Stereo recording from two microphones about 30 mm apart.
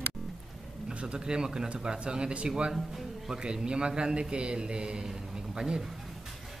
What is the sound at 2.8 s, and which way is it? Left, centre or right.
Music, centre.